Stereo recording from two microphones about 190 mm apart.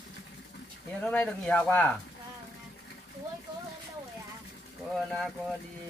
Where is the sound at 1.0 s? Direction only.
5° left (ahead or behind).